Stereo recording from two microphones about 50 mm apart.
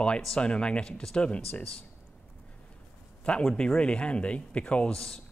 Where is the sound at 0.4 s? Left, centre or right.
Left.